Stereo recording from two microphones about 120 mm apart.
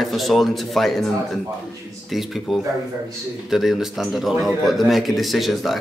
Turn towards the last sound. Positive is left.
turn(degrees=0)  # may be behind; listen again after turning